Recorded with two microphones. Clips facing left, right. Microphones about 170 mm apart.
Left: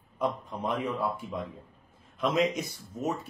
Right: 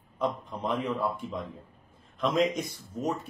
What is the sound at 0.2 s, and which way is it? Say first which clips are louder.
A man's voice: even; centre (ahead or behind).